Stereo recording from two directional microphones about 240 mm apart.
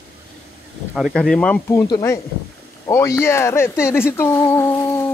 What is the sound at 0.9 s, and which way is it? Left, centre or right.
Speech, centre.